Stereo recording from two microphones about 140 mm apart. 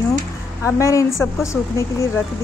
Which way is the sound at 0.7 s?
20° left (ahead or behind).